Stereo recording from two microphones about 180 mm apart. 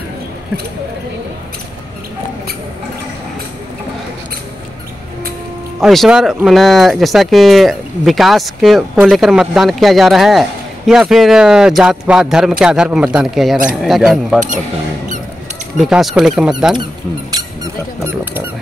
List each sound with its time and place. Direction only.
5.8 s speech: centre (ahead or behind)
15.8 s speech: centre (ahead or behind)